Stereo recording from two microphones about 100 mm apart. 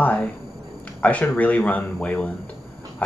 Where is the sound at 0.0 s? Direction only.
15° left (ahead or behind).